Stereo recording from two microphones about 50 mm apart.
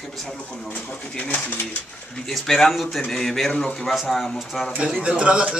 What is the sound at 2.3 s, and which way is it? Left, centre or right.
Speech, centre.